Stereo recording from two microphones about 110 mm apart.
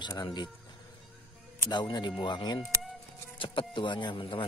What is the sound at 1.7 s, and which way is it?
Speech, 40° left (ahead or behind).